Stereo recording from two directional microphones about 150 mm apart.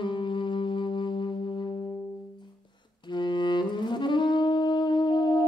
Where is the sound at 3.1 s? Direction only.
30° left (ahead or behind).